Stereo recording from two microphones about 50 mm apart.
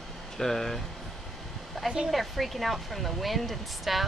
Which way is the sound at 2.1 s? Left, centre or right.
Centre.